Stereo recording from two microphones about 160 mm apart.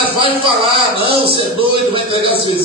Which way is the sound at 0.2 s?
35° right (ahead or behind).